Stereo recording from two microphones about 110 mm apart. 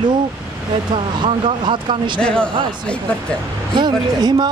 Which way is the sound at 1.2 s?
45° right (ahead or behind).